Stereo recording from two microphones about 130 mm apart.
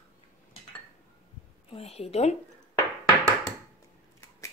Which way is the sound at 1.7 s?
50° left (ahead or behind).